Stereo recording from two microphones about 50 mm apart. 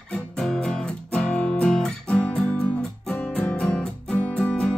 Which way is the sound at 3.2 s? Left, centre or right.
Left.